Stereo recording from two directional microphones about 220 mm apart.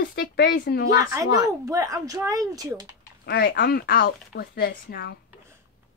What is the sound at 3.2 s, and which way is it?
A woman's voice, 45° left (ahead or behind).